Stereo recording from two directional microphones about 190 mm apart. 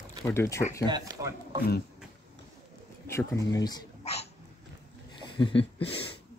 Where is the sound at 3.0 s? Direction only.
15° left (ahead or behind).